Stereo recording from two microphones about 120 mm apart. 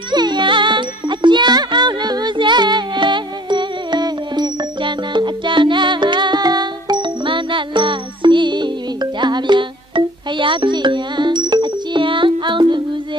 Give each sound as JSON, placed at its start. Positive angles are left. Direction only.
{"t": 0.1, "sound": "music", "side_deg": -40}